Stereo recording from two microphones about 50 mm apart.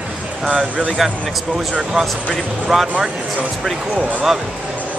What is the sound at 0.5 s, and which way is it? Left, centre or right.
Speech, right.